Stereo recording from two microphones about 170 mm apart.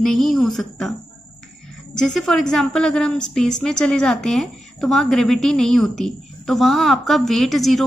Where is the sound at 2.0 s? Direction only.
5° left (ahead or behind).